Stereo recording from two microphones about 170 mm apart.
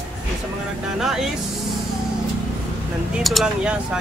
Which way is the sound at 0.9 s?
Centre (ahead or behind).